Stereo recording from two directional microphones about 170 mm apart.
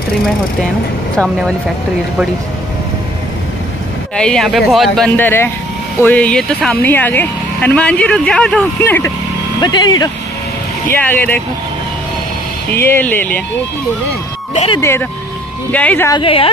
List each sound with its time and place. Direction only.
1.1 s speech: 5° left (ahead or behind)
4.2 s speech: 5° left (ahead or behind)
9.6 s speech: 25° left (ahead or behind)
10.9 s speech: 10° left (ahead or behind)
12.7 s speech: 15° left (ahead or behind)
14.8 s speech: 15° left (ahead or behind)
16.1 s a woman's voice: 30° left (ahead or behind)